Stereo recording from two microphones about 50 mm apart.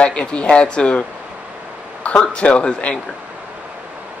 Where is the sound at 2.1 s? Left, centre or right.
Left.